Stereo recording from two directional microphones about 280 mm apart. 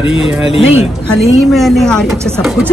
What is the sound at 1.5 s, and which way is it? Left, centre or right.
A woman's voice, centre.